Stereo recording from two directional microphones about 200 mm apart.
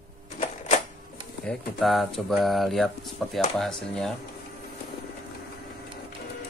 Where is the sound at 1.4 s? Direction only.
Centre (ahead or behind).